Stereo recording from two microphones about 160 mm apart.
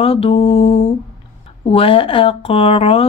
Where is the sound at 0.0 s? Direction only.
35° left (ahead or behind).